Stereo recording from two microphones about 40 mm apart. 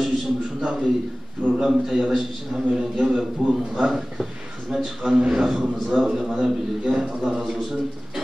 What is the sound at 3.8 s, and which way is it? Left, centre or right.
A man's voice, centre.